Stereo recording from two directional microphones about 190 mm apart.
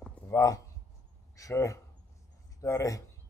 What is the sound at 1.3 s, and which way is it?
A man's voice, 15° left (ahead or behind).